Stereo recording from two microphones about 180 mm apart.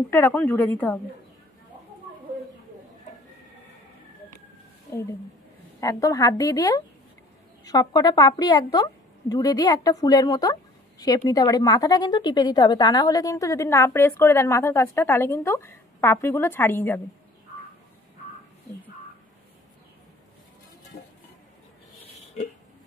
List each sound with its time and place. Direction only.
0.1 s speech: 10° left (ahead or behind)
5.8 s a woman's voice: 20° left (ahead or behind)
22.1 s hiccup: 40° left (ahead or behind)